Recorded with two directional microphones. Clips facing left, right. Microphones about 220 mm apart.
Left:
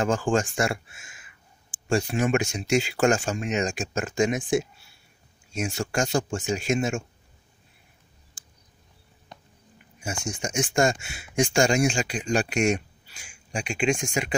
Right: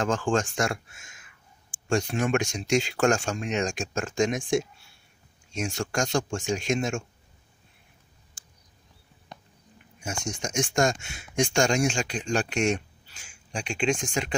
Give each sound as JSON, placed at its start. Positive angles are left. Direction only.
{"t": 0.0, "sound": "speech", "side_deg": 5}
{"t": 10.2, "sound": "speech", "side_deg": 5}